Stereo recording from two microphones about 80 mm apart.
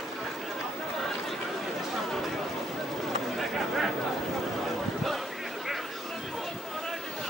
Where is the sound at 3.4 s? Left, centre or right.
Centre.